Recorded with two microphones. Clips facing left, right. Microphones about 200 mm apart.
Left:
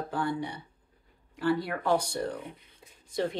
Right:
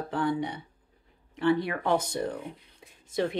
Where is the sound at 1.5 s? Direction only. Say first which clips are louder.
Right 1 dB; 20° right (ahead or behind).